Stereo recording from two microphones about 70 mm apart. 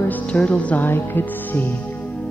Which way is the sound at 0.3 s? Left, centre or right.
Centre.